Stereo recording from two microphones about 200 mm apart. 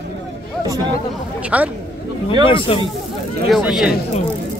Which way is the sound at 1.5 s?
5° right (ahead or behind).